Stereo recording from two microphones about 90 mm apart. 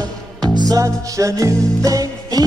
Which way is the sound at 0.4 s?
45° right (ahead or behind).